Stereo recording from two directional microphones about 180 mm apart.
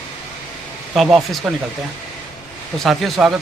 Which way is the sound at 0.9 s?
Centre (ahead or behind).